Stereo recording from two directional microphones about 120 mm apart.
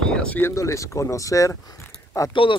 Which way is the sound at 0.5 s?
25° left (ahead or behind).